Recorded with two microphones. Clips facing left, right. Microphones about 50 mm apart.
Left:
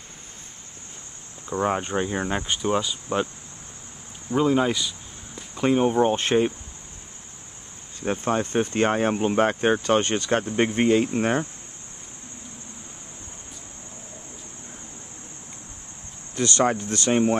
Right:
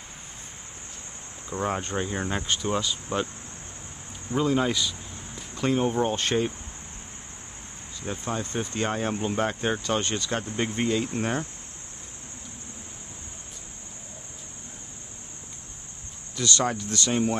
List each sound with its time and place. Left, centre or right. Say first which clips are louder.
1.5 s speech: left 4 dB; centre
4.3 s a sound: left 3 dB; centre
5.6 s speech: left 4 dB; centre
8.0 s speech: left 7 dB; left
11.1 s cricket: left 5 dB; left
16.3 s speech: left 4 dB; left